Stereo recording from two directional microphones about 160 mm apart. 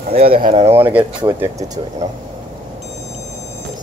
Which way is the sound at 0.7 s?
10° right (ahead or behind).